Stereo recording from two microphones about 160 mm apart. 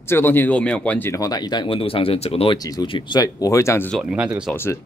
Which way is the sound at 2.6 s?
25° left (ahead or behind).